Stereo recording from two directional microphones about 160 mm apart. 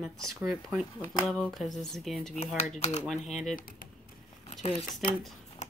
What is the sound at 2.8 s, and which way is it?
Speech, 45° left (ahead or behind).